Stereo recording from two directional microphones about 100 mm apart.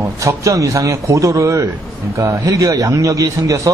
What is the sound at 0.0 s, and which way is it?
Speech, 30° right (ahead or behind).